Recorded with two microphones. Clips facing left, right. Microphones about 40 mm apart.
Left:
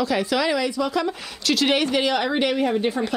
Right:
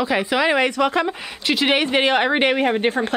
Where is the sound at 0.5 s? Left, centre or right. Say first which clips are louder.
Right 5 dB; right.